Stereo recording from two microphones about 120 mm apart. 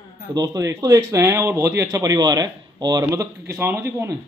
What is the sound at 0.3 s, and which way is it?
Speech, 30° right (ahead or behind).